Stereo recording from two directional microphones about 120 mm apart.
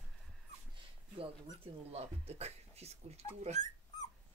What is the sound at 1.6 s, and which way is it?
Speech, 60° right (ahead or behind).